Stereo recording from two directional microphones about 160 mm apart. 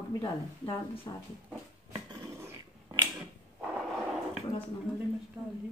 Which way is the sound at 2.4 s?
25° right (ahead or behind).